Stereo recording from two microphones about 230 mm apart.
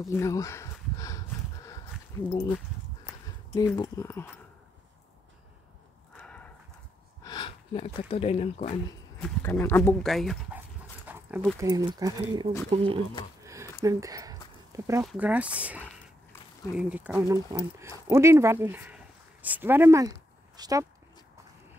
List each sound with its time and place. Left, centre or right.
0.1 s a sound: centre
2.2 s speech: centre
3.5 s speech: centre
6.1 s horse: centre
7.2 s speech: left
9.2 s speech: centre; by 13.0 s right
13.4 s a sound: centre
13.8 s speech: centre